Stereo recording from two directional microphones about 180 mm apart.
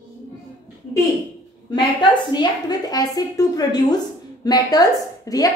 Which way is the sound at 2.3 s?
25° left (ahead or behind).